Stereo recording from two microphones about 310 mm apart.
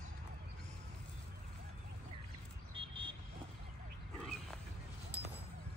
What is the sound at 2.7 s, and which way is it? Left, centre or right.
Vehicle, centre.